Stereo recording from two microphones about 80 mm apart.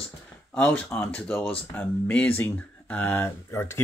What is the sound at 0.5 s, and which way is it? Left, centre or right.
Speech, centre.